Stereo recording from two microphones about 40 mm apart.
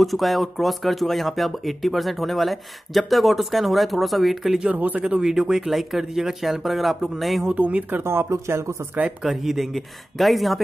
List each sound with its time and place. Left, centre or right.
0.0 s speech: centre
4.6 s speech: right
5.2 s speech: centre
7.5 s speech: right
7.9 s speech: right
9.2 s speech: centre